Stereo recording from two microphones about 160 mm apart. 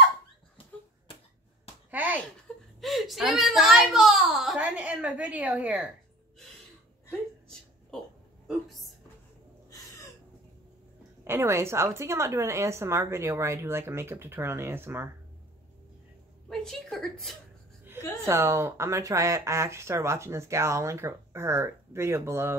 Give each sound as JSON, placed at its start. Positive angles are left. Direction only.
{"t": 1.9, "sound": "a sound", "side_deg": -10}
{"t": 2.5, "sound": "chuckle", "side_deg": 5}
{"t": 2.8, "sound": "whimper", "side_deg": 0}
{"t": 9.7, "sound": "a sound", "side_deg": 20}
{"t": 11.2, "sound": "speech", "side_deg": -15}
{"t": 16.4, "sound": "a woman's voice", "side_deg": 5}
{"t": 18.2, "sound": "speech", "side_deg": -15}